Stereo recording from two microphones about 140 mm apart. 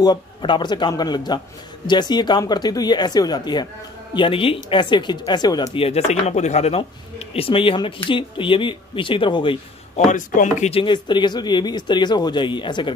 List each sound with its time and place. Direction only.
0.0 s speech: 30° left (ahead or behind)
5.8 s speech: 50° left (ahead or behind)
6.8 s speech: 40° left (ahead or behind)
9.9 s speech: 65° left (ahead or behind)
10.7 s speech: 35° left (ahead or behind)